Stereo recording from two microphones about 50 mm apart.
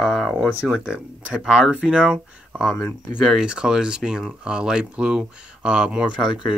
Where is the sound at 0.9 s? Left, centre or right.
Centre.